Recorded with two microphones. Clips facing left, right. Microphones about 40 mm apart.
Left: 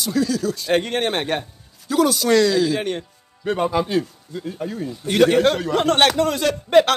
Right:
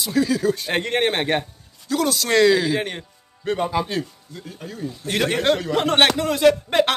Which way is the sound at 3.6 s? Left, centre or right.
Centre.